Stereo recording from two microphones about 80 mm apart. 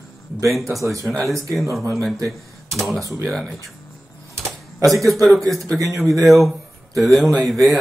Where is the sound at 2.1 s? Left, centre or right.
Right.